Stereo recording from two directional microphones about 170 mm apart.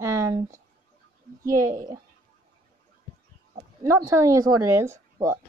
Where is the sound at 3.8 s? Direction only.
20° right (ahead or behind).